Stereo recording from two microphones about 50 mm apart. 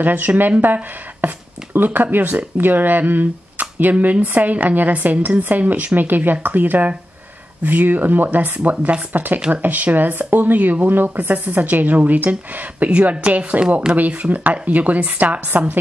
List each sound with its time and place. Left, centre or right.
0.0 s speech: right
2.0 s speech: right
8.5 s speech: right